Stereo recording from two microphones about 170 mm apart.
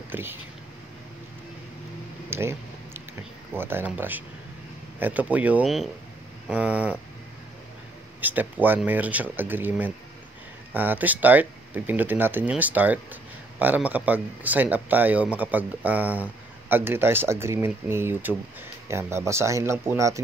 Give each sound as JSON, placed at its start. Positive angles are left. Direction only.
{"t": 0.1, "sound": "speech", "side_deg": -10}
{"t": 2.2, "sound": "a sound", "side_deg": -15}
{"t": 3.5, "sound": "speech", "side_deg": -15}
{"t": 8.2, "sound": "speech", "side_deg": -10}